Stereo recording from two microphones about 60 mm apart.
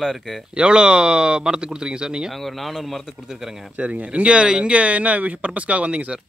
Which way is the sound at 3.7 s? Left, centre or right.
Right.